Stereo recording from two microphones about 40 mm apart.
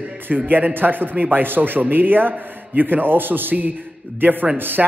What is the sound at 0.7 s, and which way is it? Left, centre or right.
A man's voice, right.